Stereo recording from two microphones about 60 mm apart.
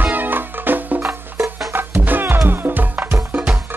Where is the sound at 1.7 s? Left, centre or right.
Right.